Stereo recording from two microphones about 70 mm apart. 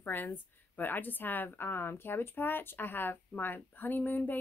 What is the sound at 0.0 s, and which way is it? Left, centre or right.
A woman's voice, left.